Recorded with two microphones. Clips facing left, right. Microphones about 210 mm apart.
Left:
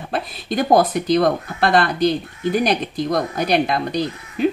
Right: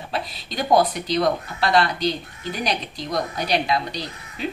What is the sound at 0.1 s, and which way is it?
Speech, 50° left (ahead or behind).